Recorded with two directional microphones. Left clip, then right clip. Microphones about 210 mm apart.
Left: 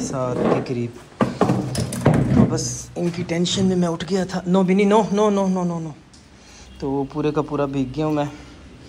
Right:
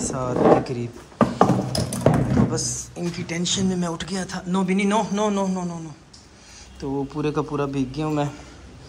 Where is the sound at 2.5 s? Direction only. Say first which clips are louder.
Left 1 dB; 15° right (ahead or behind).